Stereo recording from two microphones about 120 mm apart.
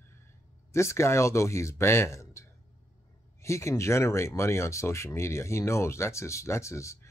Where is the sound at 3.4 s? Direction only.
25° left (ahead or behind).